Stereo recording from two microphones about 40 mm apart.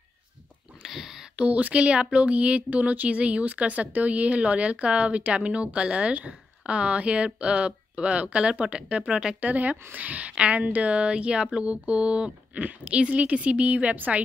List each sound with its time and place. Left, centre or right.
0.8 s a sound: centre
1.3 s speech: right
9.1 s speech: centre
9.4 s speech: right
10.3 s a woman's voice: right